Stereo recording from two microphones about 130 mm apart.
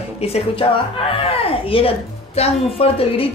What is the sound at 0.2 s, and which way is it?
Music, 50° left (ahead or behind).